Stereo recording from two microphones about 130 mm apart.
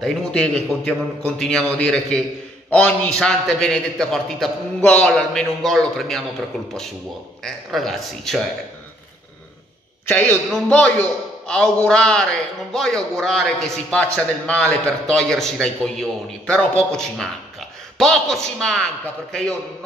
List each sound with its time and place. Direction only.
0.0 s a man's voice: 5° left (ahead or behind)
7.4 s a man's voice: centre (ahead or behind)
10.0 s a man's voice: 10° left (ahead or behind)